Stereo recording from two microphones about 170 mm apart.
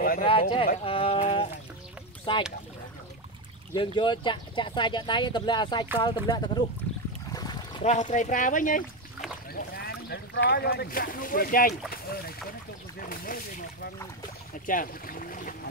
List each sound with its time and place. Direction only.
0.2 s speech: 30° left (ahead or behind)
3.7 s speech: 30° left (ahead or behind)
7.3 s a sound: 25° left (ahead or behind)
7.8 s speech: 45° left (ahead or behind)
9.5 s speech: 65° left (ahead or behind)
14.7 s boat: 55° left (ahead or behind)